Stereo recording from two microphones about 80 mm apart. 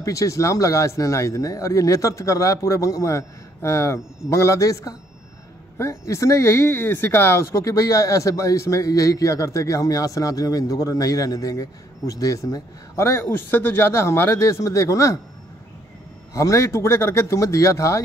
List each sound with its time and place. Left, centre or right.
0.0 s speech: left
12.9 s speech: left
16.3 s speech: left